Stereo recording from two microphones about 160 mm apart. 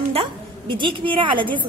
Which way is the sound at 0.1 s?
35° right (ahead or behind).